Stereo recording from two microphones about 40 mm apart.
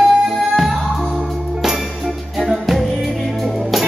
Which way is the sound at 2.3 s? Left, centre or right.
Centre.